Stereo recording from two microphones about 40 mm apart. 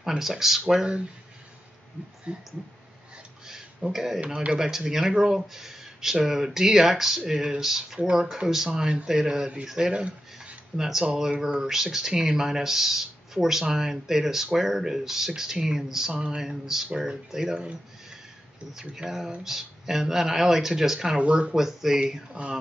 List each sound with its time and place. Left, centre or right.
0.2 s speech: centre
2.3 s speech: right
3.4 s speech: centre
9.9 s speech: right
10.8 s speech: centre
16.1 s speech: right
16.3 s speech: centre
18.7 s speech: centre
21.2 s speech: right
21.5 s speech: centre
22.3 s speech: right